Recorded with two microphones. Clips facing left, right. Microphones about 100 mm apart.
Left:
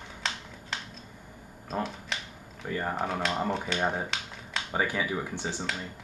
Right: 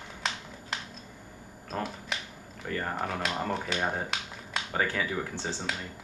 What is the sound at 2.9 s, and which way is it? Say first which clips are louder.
Speech: left 3 dB; centre (ahead or behind).